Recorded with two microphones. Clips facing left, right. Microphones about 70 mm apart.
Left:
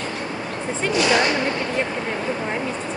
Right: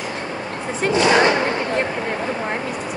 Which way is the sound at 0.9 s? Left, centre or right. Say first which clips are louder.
Right 4 dB; right.